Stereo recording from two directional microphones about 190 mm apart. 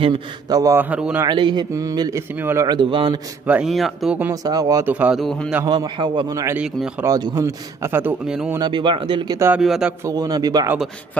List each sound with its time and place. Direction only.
0.0 s a man's voice: 25° right (ahead or behind); by 1.2 s 5° right (ahead or behind)
1.2 s a man's voice: 25° right (ahead or behind)
3.4 s speech: 5° right (ahead or behind)
4.3 s a man's voice: 20° right (ahead or behind); by 5.6 s centre (ahead or behind)
5.7 s a man's voice: 25° right (ahead or behind); by 7.1 s 5° right (ahead or behind)
7.1 s a man's voice: 20° right (ahead or behind)
8.5 s a man's voice: 25° right (ahead or behind)
9.5 s speech: centre (ahead or behind)
10.0 s a man's voice: 20° right (ahead or behind)